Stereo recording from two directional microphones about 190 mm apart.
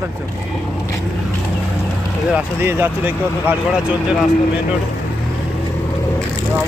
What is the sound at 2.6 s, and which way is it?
Speech, 10° right (ahead or behind).